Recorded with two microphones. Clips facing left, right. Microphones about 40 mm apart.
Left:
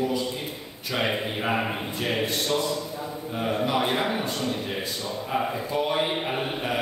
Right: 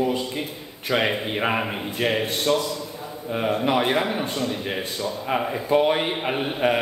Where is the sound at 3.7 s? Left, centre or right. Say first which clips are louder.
Right 5 dB; right.